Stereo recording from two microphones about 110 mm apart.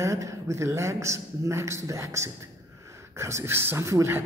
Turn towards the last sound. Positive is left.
turn(degrees=-25)  # may be behind; listen again after turning